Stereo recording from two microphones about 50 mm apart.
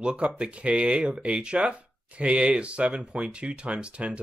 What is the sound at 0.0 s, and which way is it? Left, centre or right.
Speech, right.